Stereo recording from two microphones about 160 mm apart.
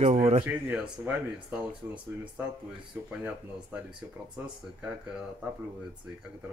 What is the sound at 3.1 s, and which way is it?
Speech, 5° right (ahead or behind).